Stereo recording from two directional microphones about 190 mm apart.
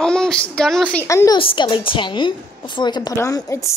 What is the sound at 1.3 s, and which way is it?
A woman's voice, 25° left (ahead or behind).